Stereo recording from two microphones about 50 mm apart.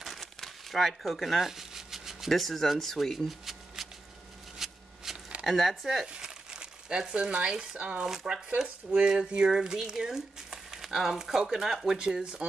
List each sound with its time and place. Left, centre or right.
0.2 s crumpling: centre
1.4 s speech: centre
4.6 s shuffling cards: centre
5.1 s a sound: centre
5.4 s speech: centre
6.0 s speech: centre
8.0 s speech: centre